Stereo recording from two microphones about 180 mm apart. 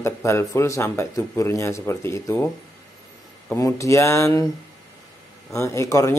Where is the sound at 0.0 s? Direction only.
15° left (ahead or behind).